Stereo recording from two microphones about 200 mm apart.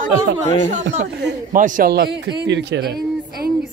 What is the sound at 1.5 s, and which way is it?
A man's voice, 45° right (ahead or behind).